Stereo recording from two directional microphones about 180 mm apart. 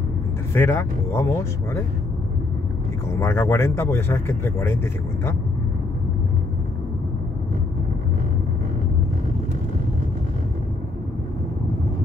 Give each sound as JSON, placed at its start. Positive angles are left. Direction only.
{"t": 0.5, "sound": "speech", "side_deg": 10}
{"t": 3.2, "sound": "speech", "side_deg": 15}